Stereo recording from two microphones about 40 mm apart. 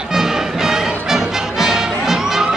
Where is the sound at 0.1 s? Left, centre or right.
Centre.